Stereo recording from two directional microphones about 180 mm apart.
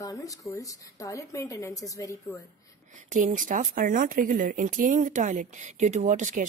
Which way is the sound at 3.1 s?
45° right (ahead or behind).